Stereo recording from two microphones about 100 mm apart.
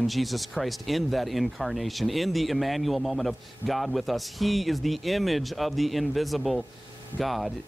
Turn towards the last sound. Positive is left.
turn(degrees=0)  # may be behind; listen again after turning